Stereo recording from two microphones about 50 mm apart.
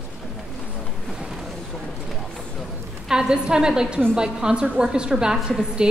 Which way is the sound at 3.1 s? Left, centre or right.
Centre.